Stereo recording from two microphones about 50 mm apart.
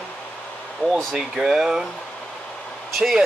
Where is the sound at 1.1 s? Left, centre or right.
Centre.